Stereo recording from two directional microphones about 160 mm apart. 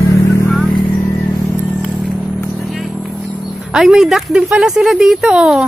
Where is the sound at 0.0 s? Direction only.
20° left (ahead or behind).